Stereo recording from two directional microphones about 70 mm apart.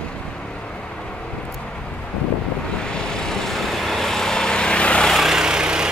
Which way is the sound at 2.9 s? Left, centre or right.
Centre.